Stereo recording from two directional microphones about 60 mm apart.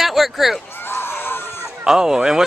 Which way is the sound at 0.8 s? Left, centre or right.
Left.